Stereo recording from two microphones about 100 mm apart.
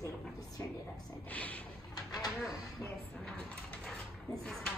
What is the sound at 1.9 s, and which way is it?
Bird, 40° left (ahead or behind).